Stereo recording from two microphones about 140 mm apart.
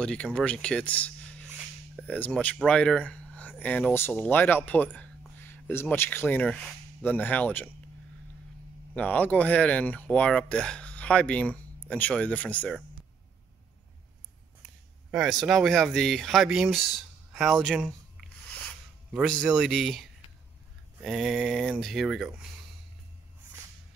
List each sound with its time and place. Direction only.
0.0 s speech: 5° left (ahead or behind)
8.9 s speech: 10° left (ahead or behind)
15.0 s speech: centre (ahead or behind)
19.2 s speech: 5° left (ahead or behind)